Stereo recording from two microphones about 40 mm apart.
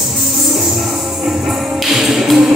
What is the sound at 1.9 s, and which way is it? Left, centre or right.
Music, centre.